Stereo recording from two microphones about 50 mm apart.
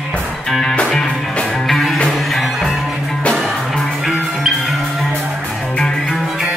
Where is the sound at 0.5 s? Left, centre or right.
Centre.